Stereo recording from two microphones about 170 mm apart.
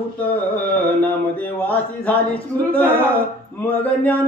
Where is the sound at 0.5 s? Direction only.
10° left (ahead or behind).